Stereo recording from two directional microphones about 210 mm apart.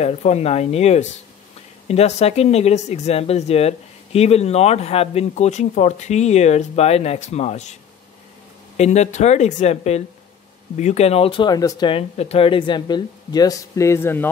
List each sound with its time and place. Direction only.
0.0 s speech: 30° left (ahead or behind)
8.7 s speech: 30° left (ahead or behind); by 14.3 s 10° left (ahead or behind)